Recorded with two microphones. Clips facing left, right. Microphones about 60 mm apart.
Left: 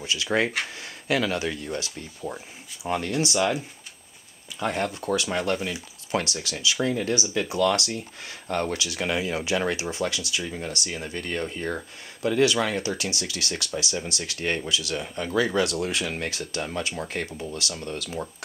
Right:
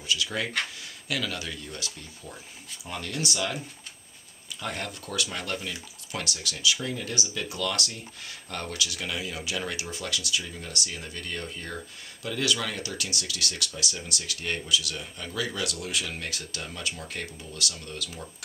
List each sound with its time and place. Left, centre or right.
0.0 s speech: left
4.6 s speech: left